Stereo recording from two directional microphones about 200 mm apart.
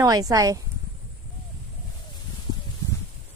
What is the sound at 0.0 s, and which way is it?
Speech, 20° right (ahead or behind).